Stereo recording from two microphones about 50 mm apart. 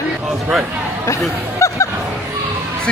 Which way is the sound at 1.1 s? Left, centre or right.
Left.